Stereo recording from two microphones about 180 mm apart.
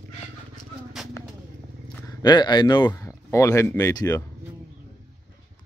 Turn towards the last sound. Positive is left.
turn(degrees=20)  # may be behind; listen again after turning